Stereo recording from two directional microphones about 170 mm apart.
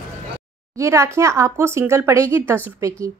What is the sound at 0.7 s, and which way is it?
Speech, 15° right (ahead or behind).